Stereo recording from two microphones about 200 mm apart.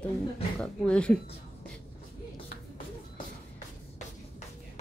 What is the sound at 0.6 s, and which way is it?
Speech, 5° left (ahead or behind).